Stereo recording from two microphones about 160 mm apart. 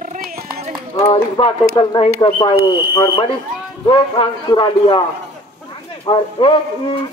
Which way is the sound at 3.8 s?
30° left (ahead or behind).